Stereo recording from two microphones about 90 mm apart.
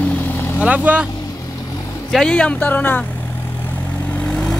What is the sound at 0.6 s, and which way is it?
Speech, 15° right (ahead or behind).